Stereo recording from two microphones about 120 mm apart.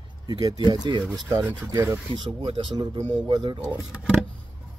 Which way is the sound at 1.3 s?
20° right (ahead or behind).